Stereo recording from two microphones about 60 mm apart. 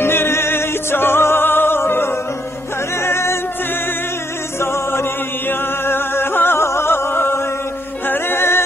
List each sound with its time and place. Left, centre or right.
0.0 s music: left
4.6 s music: left